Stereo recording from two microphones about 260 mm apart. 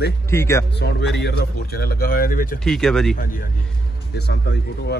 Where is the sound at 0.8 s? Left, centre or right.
Left.